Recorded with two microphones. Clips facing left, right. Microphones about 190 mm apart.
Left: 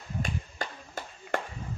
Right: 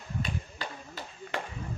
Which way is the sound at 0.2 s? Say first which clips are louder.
Left 3 dB; 50° left (ahead or behind).